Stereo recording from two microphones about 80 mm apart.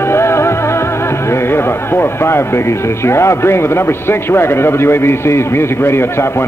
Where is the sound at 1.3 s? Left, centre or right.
Left.